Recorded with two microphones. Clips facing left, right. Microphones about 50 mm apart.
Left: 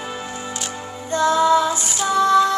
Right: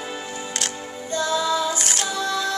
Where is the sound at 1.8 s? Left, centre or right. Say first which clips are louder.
Left 2 dB; right.